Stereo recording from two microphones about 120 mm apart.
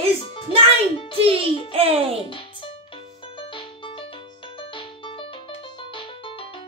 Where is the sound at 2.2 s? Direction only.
45° left (ahead or behind).